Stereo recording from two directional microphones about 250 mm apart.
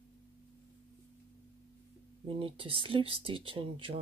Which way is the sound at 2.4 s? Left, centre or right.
Right.